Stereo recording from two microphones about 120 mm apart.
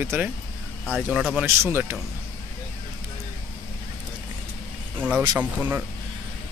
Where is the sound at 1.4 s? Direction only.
20° right (ahead or behind).